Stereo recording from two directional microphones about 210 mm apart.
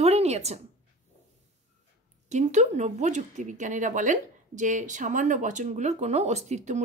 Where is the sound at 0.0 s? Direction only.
30° right (ahead or behind).